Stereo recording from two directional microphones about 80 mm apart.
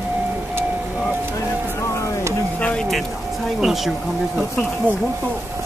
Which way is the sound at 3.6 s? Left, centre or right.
Centre.